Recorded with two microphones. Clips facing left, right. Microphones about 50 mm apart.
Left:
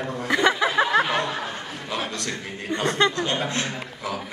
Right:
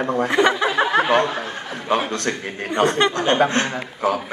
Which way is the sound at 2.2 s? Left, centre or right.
Right.